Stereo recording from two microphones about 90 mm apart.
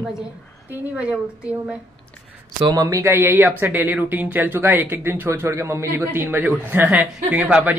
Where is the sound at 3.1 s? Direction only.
25° right (ahead or behind).